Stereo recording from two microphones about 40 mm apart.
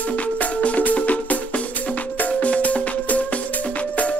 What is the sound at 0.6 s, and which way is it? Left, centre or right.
Music, left.